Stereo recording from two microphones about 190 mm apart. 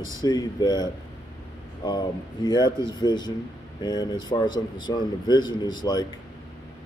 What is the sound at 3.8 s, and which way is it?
Speech, 20° left (ahead or behind).